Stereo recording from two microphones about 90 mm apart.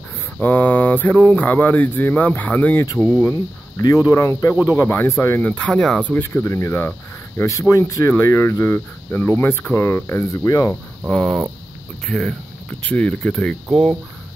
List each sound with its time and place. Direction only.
0.4 s speech: 20° left (ahead or behind)
3.1 s speech: 30° left (ahead or behind)
5.7 s speech: 5° left (ahead or behind)
6.2 s speech: 30° left (ahead or behind)
10.7 s speech: 5° left (ahead or behind)